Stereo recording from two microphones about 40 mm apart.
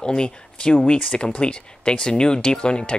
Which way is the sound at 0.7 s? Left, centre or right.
Left.